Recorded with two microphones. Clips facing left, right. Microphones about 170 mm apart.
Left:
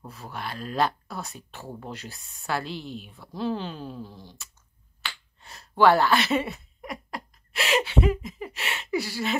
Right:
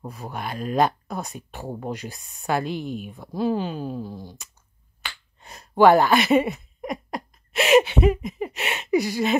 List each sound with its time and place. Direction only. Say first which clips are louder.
0.0 s speech: right 4 dB; 15° right (ahead or behind)
2.7 s a woman's voice: right 6 dB; 50° right (ahead or behind)
3.1 s speech: right 4 dB; 15° right (ahead or behind)